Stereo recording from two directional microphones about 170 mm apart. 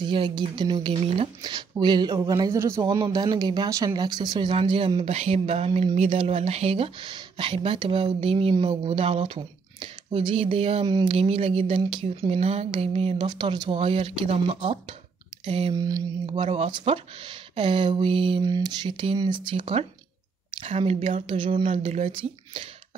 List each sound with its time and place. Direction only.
0.0 s speech: 30° right (ahead or behind)